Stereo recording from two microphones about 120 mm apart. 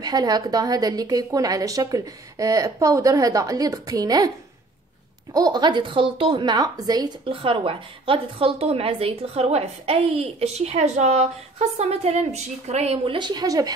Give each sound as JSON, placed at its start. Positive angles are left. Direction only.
{"t": 0.0, "sound": "a woman's voice", "side_deg": -35}
{"t": 5.3, "sound": "a woman's voice", "side_deg": -35}
{"t": 7.2, "sound": "a woman's voice", "side_deg": -45}
{"t": 13.1, "sound": "a woman's voice", "side_deg": -35}